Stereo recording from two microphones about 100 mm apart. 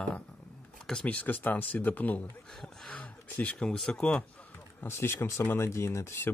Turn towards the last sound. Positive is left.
turn(degrees=25)  # may be behind; listen again after turning